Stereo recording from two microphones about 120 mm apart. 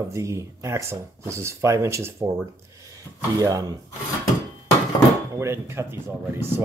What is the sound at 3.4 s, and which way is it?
Speech, 30° right (ahead or behind).